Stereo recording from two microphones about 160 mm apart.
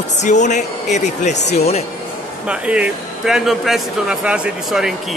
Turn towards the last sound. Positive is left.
turn(degrees=-5)  # may be behind; listen again after turning